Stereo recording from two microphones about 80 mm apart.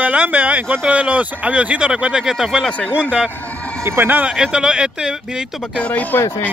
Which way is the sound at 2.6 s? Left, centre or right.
Centre.